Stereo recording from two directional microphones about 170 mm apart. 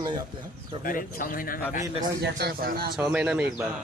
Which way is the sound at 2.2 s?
70° right (ahead or behind).